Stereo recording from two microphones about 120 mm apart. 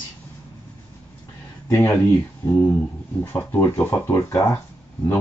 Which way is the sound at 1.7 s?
20° left (ahead or behind).